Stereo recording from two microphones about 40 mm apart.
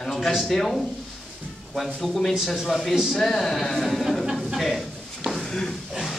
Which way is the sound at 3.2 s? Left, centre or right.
Centre.